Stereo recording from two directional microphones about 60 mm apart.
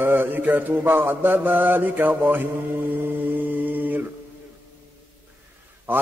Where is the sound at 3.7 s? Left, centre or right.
Right.